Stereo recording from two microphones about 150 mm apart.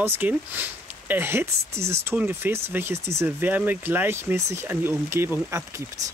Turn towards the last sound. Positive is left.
turn(degrees=-15)  # may be behind; listen again after turning